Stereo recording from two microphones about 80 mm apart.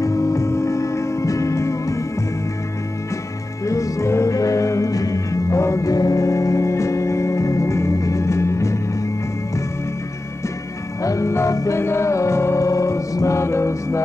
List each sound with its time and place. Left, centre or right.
0.0 s music: left
3.6 s music: left
11.0 s music: left